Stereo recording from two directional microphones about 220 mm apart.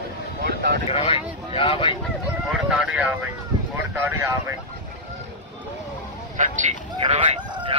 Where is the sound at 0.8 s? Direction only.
25° left (ahead or behind).